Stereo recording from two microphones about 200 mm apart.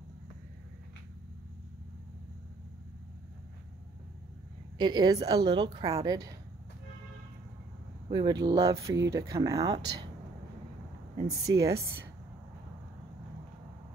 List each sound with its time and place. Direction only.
4.7 s a woman's voice: 20° right (ahead or behind)
8.1 s speech: 20° right (ahead or behind)
11.2 s speech: 15° right (ahead or behind)